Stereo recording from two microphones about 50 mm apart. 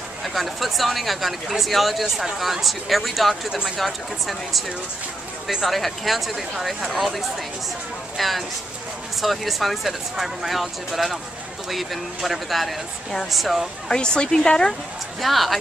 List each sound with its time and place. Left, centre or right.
0.2 s speech: centre
13.8 s a woman's voice: centre
15.1 s speech: centre